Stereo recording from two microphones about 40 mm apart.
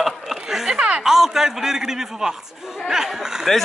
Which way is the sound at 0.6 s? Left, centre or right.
Right.